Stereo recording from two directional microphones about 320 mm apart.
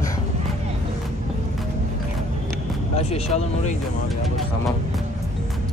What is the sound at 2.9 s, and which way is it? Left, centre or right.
Speech, centre.